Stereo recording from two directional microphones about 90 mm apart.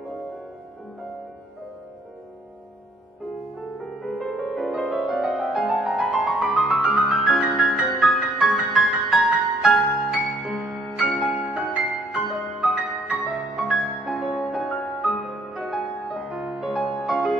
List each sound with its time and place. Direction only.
3.8 s music: centre (ahead or behind)